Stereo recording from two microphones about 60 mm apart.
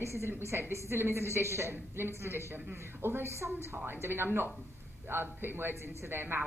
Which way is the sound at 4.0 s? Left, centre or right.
Right.